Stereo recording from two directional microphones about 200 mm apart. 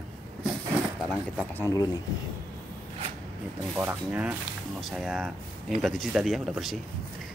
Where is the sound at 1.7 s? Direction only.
20° left (ahead or behind).